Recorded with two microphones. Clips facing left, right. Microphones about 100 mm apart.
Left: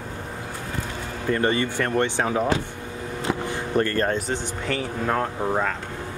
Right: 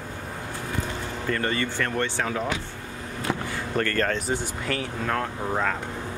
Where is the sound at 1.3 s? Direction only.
20° left (ahead or behind).